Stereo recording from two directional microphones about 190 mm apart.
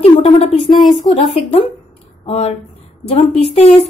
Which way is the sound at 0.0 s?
30° left (ahead or behind).